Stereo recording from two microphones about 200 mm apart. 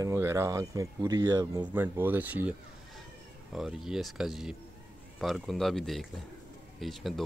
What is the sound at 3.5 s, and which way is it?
Speech, centre (ahead or behind).